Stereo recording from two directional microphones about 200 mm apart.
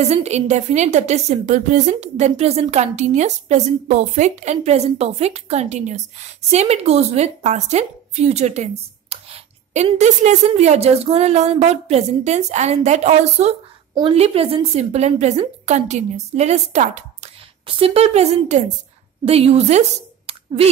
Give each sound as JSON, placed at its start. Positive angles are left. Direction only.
{"t": 0.0, "sound": "a woman's voice", "side_deg": -35}